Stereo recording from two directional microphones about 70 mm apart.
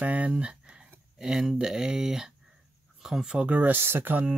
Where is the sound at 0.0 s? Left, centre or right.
Centre.